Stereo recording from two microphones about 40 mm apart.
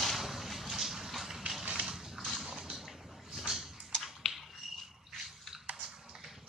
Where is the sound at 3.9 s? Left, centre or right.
Centre.